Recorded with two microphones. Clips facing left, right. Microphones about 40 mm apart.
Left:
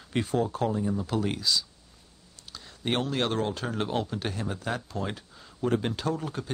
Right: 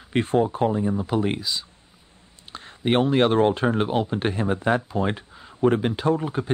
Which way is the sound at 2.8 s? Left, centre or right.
Right.